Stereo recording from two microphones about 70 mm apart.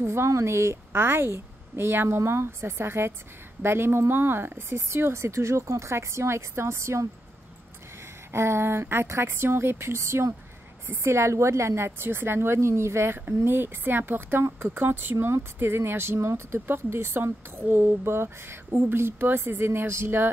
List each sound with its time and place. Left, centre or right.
0.0 s speech: right